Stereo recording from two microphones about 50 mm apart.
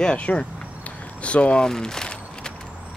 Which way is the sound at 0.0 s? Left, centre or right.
Left.